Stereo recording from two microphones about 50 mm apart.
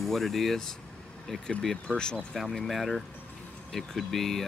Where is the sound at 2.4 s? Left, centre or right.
Centre.